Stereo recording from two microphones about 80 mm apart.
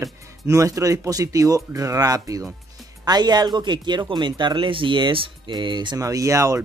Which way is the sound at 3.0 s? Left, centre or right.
Right.